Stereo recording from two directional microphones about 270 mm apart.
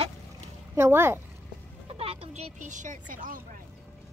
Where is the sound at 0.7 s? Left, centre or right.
Centre.